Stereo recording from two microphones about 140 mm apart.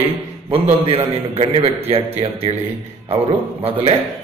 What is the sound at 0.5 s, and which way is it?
A man's voice, 45° right (ahead or behind).